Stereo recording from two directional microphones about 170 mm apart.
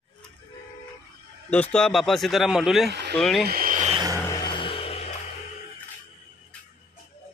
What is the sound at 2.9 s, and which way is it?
Speech, 75° right (ahead or behind).